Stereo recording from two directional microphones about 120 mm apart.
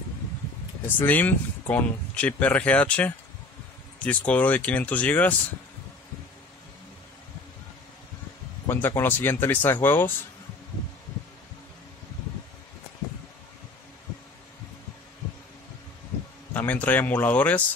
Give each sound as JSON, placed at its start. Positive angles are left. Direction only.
{"t": 0.8, "sound": "speech", "side_deg": 15}
{"t": 4.3, "sound": "speech", "side_deg": 15}
{"t": 8.6, "sound": "speech", "side_deg": 20}
{"t": 16.5, "sound": "speech", "side_deg": 15}